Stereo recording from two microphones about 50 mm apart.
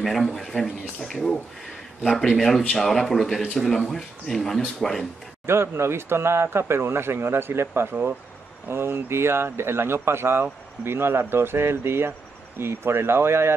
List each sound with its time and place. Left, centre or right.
0.0 s speech: centre
5.5 s speech: right